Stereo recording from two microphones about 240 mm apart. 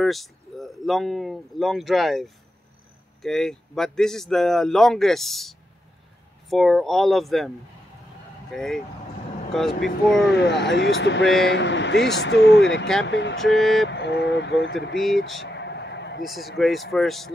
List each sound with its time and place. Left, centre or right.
0.0 s speech: centre
10.3 s speech: left
13.6 s speech: centre
13.8 s speech: left
15.0 s speech: centre
15.4 s a sound: left
16.3 s speech: centre